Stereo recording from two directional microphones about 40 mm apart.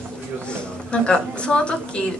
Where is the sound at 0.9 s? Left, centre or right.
Left.